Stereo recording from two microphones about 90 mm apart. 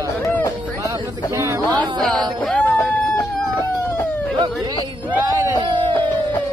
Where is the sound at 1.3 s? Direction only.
35° right (ahead or behind).